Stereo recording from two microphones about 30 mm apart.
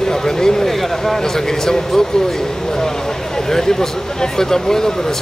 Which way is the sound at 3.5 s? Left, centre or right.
Centre.